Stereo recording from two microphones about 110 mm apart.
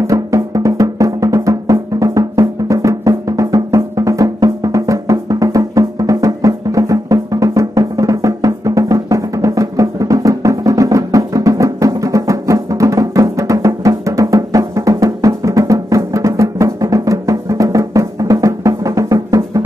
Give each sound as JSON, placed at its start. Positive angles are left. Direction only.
{"t": 0.0, "sound": "drum", "side_deg": -30}